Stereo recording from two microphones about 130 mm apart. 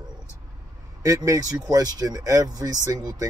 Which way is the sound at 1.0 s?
25° right (ahead or behind).